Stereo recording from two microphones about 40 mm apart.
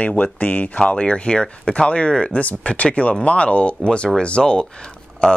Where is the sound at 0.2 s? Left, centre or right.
Left.